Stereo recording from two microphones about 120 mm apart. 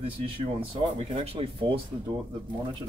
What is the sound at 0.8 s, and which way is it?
Speech, 60° right (ahead or behind).